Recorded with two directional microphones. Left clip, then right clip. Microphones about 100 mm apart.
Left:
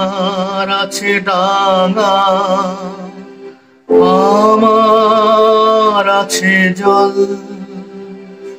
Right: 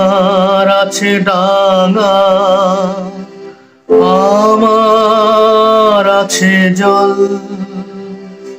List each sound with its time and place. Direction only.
0.0 s mantra: 25° right (ahead or behind)
4.0 s music: 25° right (ahead or behind)